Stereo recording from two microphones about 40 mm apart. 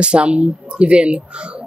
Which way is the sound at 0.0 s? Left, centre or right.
Right.